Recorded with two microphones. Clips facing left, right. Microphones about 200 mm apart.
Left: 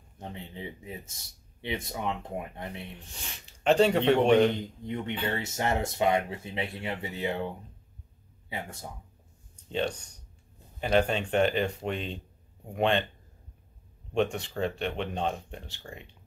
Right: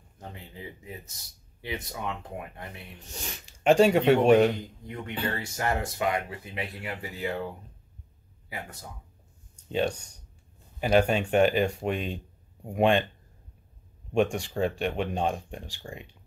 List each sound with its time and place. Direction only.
0.3 s speech: 25° left (ahead or behind)
3.4 s speech: 10° right (ahead or behind)
4.6 s speech: 25° left (ahead or behind)
8.5 s speech: 25° left (ahead or behind)
9.7 s speech: 10° right (ahead or behind)
14.1 s speech: 10° right (ahead or behind)